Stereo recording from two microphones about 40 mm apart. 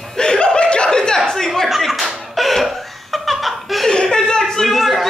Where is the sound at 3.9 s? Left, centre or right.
Centre.